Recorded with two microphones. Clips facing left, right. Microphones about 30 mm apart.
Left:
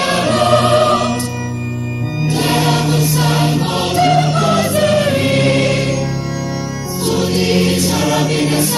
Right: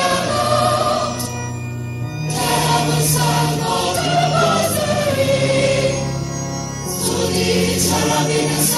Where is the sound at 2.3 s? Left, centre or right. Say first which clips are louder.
Left 2 dB; left.